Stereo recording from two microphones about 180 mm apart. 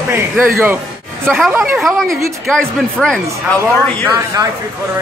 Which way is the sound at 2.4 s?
5° left (ahead or behind).